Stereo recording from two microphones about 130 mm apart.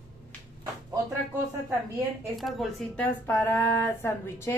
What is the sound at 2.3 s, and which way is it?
Speech, centre (ahead or behind).